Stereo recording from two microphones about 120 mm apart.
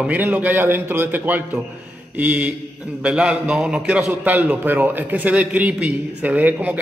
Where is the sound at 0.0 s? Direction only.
15° right (ahead or behind).